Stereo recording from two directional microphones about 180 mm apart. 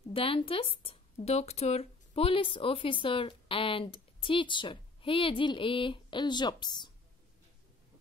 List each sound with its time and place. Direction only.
0.1 s speech: 30° left (ahead or behind)